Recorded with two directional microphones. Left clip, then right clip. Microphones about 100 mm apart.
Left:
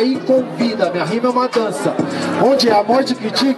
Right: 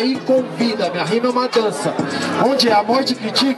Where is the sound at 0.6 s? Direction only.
20° right (ahead or behind).